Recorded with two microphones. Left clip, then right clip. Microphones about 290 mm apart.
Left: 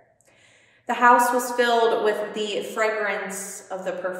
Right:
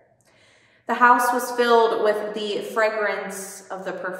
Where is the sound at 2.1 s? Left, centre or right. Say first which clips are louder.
Right 1 dB; centre.